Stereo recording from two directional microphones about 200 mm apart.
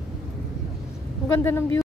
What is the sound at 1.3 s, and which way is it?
Speech, 10° left (ahead or behind).